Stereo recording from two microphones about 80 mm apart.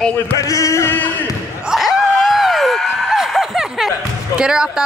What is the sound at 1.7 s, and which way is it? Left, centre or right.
Speech, centre.